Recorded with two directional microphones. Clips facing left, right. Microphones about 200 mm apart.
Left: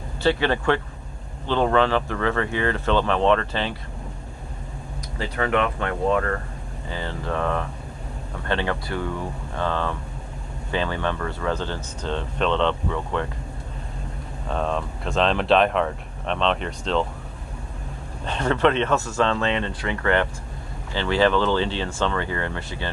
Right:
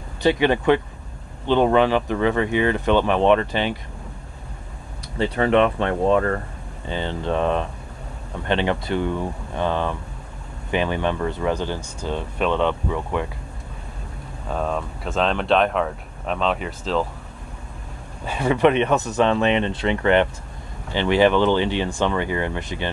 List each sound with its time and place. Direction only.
0.2 s speech: 15° right (ahead or behind)
5.2 s speech: 25° right (ahead or behind)
14.5 s speech: 5° right (ahead or behind)
18.2 s speech: 10° right (ahead or behind)